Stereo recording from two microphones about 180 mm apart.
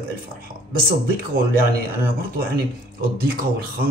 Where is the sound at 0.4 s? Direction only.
55° right (ahead or behind).